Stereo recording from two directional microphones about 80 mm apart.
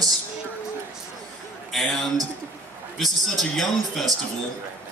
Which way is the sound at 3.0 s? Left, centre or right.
Centre.